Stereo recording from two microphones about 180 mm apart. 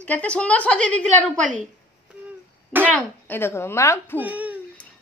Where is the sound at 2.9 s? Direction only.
10° left (ahead or behind).